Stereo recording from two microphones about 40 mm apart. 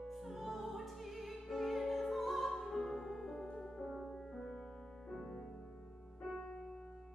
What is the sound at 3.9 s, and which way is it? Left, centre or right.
Music, centre.